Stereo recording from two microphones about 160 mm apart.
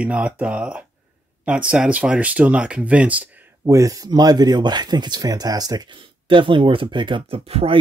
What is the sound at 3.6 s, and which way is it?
Speech, 20° right (ahead or behind).